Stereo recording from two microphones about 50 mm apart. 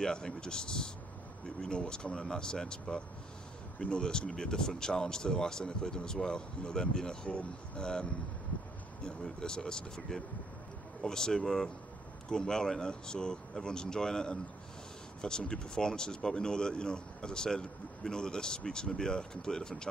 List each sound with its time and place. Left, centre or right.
0.0 s speech: centre